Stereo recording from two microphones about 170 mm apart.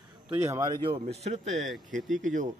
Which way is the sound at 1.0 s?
40° right (ahead or behind).